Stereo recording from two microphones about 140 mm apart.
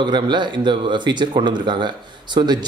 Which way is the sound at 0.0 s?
35° right (ahead or behind).